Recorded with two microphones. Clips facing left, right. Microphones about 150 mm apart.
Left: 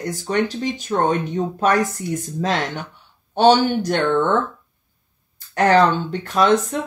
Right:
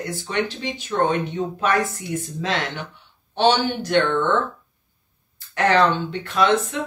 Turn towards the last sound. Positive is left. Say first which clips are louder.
# left 3 dB
turn(degrees=40)  # may be behind; listen again after turning